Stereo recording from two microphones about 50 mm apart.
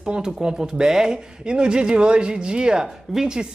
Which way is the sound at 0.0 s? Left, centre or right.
Centre.